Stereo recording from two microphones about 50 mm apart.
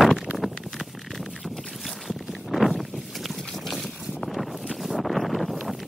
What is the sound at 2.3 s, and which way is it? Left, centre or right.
Boat, centre.